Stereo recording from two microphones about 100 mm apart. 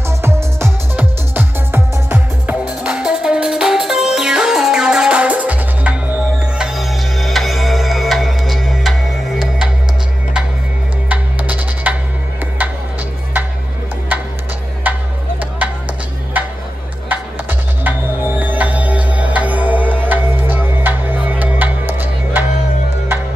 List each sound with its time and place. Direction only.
0.2 s music: 25° right (ahead or behind)
6.6 s music: centre (ahead or behind)
11.1 s music: 15° right (ahead or behind)
14.8 s tick-tock: 20° right (ahead or behind)
15.6 s music: 15° right (ahead or behind)
16.3 s a sound: 15° right (ahead or behind)
17.1 s music: 20° right (ahead or behind)